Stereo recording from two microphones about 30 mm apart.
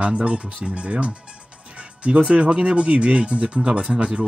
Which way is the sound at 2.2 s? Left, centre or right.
Right.